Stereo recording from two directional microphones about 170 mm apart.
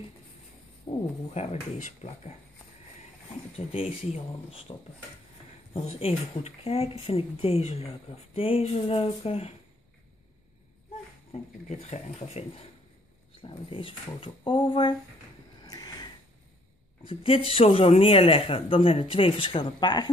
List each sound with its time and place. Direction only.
0.9 s speech: 35° left (ahead or behind)
3.5 s speech: 35° left (ahead or behind)
11.7 s speech: 40° left (ahead or behind)
15.6 s a sound: 20° left (ahead or behind)
17.0 s speech: 30° left (ahead or behind)